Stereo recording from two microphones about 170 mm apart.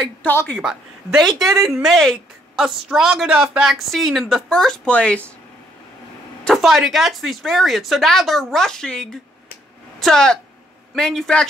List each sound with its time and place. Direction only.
0.0 s a woman's voice: 10° left (ahead or behind)
0.6 s a woman's voice: centre (ahead or behind)
6.4 s a woman's voice: centre (ahead or behind)